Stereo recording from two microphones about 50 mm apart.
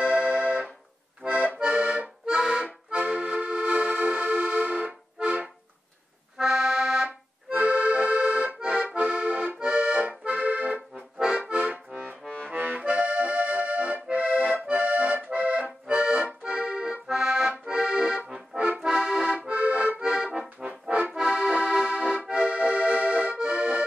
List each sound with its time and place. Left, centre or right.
0.1 s music: right
1.2 s accordion: right
2.3 s accordion: centre
2.6 s accordion: right
6.3 s accordion: centre
7.1 s accordion: right
11.7 s accordion: right; by 17.0 s centre
17.1 s accordion: centre
17.7 s accordion: centre